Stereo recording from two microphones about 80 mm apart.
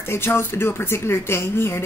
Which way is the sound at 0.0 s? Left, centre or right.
Left.